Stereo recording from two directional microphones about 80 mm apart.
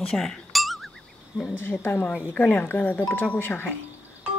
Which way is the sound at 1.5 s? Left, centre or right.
Left.